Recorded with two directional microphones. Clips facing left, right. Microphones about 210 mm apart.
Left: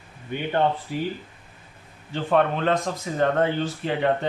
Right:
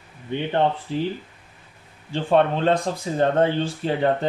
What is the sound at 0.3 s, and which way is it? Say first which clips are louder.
Speech: right 1 dB; 25° right (ahead or behind).